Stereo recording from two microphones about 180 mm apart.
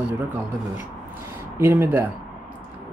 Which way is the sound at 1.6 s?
15° right (ahead or behind).